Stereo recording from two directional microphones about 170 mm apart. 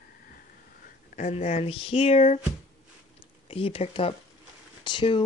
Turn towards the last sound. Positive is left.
turn(degrees=30)  # may be behind; listen again after turning